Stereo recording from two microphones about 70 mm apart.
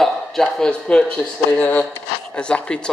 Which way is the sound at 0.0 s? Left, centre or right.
Centre.